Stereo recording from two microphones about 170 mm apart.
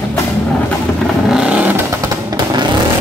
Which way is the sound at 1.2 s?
5° right (ahead or behind).